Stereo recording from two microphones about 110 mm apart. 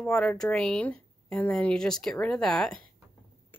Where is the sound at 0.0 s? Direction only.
10° left (ahead or behind).